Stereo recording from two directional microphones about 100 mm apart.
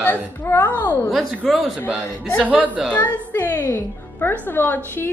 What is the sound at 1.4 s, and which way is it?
Speech, centre (ahead or behind).